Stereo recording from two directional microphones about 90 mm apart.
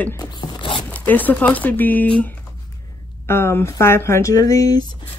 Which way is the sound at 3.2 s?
30° left (ahead or behind).